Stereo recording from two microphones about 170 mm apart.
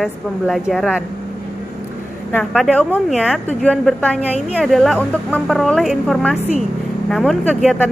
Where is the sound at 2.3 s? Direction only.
5° left (ahead or behind).